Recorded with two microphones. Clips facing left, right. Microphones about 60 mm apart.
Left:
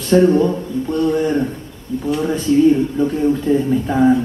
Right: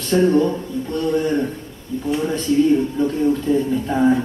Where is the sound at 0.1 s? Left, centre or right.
Centre.